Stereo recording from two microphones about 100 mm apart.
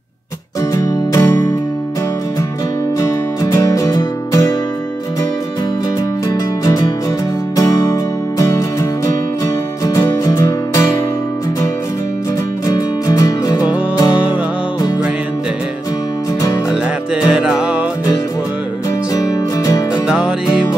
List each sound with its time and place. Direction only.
0.7 s music: 35° left (ahead or behind)
3.5 s music: 35° left (ahead or behind)
6.2 s music: 40° left (ahead or behind)
12.6 s music: 40° left (ahead or behind)
17.1 s music: 10° right (ahead or behind)
19.1 s music: 35° left (ahead or behind)
20.1 s music: 10° right (ahead or behind)